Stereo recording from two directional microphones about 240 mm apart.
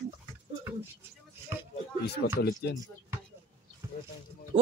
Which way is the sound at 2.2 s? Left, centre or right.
Left.